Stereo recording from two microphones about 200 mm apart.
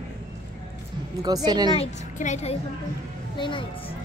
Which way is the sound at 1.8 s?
35° left (ahead or behind).